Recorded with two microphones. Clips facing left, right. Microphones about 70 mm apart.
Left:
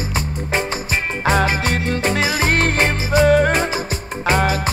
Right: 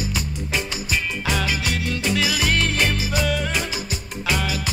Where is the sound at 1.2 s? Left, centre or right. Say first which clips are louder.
Left 7 dB; left.